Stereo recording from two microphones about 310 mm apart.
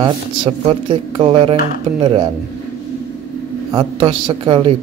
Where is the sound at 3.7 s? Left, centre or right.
Centre.